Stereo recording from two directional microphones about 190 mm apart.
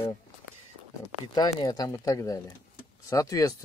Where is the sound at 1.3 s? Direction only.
20° left (ahead or behind).